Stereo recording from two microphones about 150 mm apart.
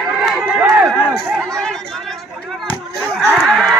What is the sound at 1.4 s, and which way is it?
Chatter, 5° left (ahead or behind).